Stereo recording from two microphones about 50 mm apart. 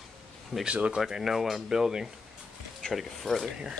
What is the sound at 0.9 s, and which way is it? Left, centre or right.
Speech, centre.